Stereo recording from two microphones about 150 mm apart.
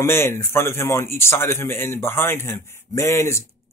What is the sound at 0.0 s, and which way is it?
A man's voice, 15° left (ahead or behind).